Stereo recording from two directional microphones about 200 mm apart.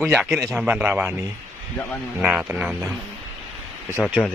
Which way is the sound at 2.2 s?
5° right (ahead or behind).